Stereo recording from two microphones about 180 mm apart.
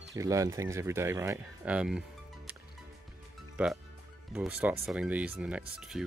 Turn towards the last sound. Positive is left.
turn(degrees=-5)  # may be behind; listen again after turning